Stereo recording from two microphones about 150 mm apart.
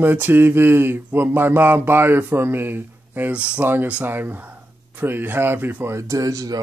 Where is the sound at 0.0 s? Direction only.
10° right (ahead or behind).